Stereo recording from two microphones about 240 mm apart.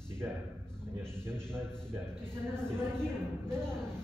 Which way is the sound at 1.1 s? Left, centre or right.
Centre.